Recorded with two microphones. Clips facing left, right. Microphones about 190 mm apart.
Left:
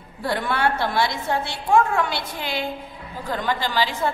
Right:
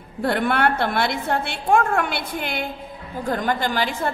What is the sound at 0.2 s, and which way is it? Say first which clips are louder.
A woman's voice: right 3 dB; 60° right (ahead or behind).